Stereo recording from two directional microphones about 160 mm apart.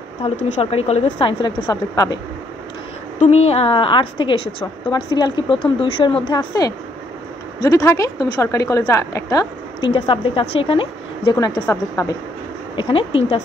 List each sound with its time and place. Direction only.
0.2 s a woman's voice: 40° left (ahead or behind)
1.4 s a woman's voice: 25° left (ahead or behind)
3.2 s a woman's voice: 40° left (ahead or behind); by 9.8 s 20° left (ahead or behind)
9.8 s a woman's voice: 35° left (ahead or behind); by 12.2 s 15° left (ahead or behind)
12.7 s a woman's voice: 35° left (ahead or behind)